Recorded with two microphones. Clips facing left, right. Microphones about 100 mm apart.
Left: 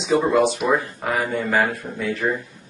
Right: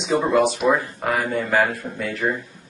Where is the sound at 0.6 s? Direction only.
Centre (ahead or behind).